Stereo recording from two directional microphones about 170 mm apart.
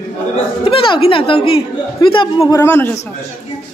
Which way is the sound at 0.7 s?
30° left (ahead or behind).